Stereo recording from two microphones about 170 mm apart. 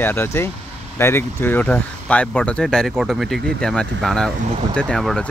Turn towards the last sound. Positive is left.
turn(degrees=5)  # may be behind; listen again after turning